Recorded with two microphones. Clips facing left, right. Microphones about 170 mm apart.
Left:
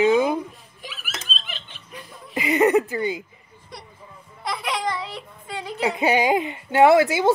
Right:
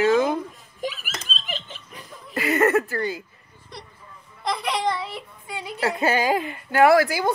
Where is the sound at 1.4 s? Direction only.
40° right (ahead or behind).